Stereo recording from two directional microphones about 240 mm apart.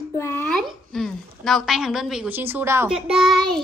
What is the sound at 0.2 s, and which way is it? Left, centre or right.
A woman's voice, centre.